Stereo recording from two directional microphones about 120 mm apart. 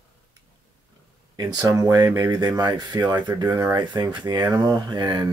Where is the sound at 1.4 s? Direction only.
30° right (ahead or behind).